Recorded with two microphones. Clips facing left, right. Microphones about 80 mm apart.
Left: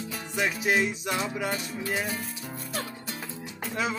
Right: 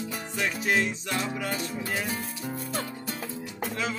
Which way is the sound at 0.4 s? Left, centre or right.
Centre.